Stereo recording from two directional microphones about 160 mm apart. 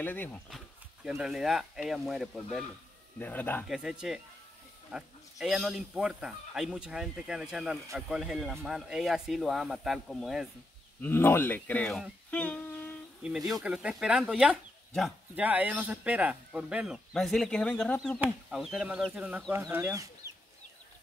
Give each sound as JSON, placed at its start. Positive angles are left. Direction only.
{"t": 0.0, "sound": "speech", "side_deg": 10}
{"t": 1.0, "sound": "speech", "side_deg": -5}
{"t": 3.2, "sound": "speech", "side_deg": 10}
{"t": 3.6, "sound": "speech", "side_deg": -5}
{"t": 11.0, "sound": "speech", "side_deg": 15}
{"t": 12.3, "sound": "humming", "side_deg": 10}
{"t": 13.5, "sound": "speech", "side_deg": -5}
{"t": 15.4, "sound": "speech", "side_deg": -10}
{"t": 18.2, "sound": "speech", "side_deg": -5}